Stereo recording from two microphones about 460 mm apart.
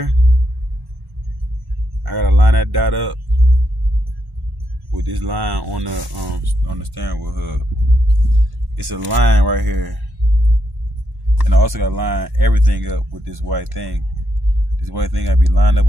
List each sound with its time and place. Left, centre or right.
2.1 s a sound: right
4.9 s speech: right
8.8 s speech: right
11.4 s speech: right